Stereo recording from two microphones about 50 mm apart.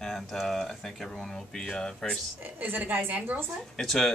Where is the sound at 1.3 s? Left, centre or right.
Centre.